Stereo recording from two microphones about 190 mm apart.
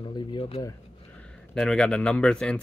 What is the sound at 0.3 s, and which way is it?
Speech, 25° left (ahead or behind).